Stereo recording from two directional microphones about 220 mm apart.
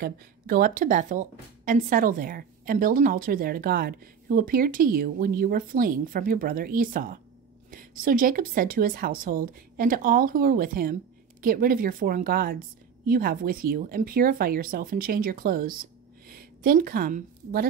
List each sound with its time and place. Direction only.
0.0 s a woman's voice: 40° right (ahead or behind)